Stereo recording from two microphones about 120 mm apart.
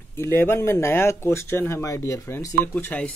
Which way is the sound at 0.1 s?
20° left (ahead or behind).